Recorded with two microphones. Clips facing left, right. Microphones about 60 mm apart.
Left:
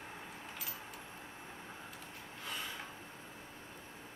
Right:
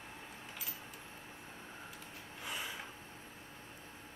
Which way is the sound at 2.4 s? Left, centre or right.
Centre.